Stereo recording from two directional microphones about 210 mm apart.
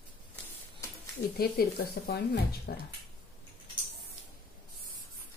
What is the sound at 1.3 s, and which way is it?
Speech, 45° left (ahead or behind).